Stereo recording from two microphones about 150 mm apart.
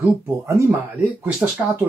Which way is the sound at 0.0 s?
15° right (ahead or behind).